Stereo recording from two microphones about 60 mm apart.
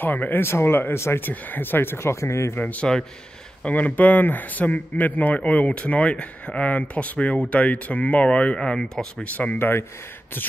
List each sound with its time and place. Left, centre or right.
0.0 s speech: left
1.2 s speech: left
2.1 s speech: left
2.5 s speech: left; by 9.0 s centre
9.2 s speech: left
9.6 s speech: left